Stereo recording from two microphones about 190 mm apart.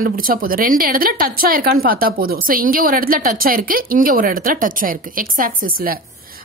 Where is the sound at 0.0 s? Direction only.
50° right (ahead or behind).